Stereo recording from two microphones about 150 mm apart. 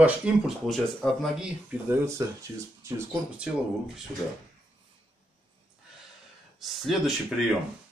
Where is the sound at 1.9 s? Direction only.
20° right (ahead or behind).